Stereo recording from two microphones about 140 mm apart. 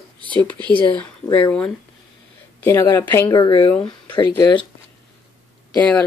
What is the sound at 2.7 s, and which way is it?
Speech, 25° left (ahead or behind).